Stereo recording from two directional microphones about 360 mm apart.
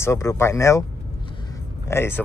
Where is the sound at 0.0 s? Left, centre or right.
Centre.